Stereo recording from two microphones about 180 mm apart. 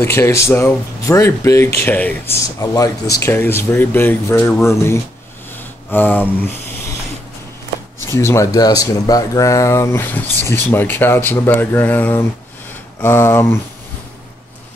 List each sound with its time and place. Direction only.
0.0 s speech: 15° left (ahead or behind)
5.6 s a sound: 10° left (ahead or behind)
8.1 s speech: 15° left (ahead or behind)